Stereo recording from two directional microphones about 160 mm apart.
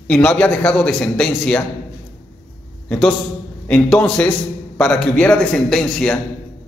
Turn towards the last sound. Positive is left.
turn(degrees=5)  # may be behind; listen again after turning